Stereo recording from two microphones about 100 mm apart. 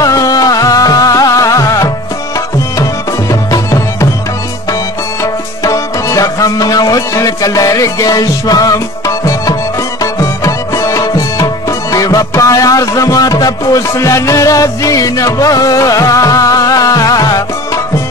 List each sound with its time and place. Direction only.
0.0 s music: 35° left (ahead or behind)
5.2 s tabla: 35° left (ahead or behind)
10.1 s music: 30° left (ahead or behind)